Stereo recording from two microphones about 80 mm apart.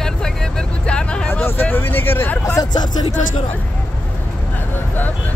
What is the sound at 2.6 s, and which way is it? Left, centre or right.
Speech, left.